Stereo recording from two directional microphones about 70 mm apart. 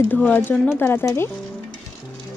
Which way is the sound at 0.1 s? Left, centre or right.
Left.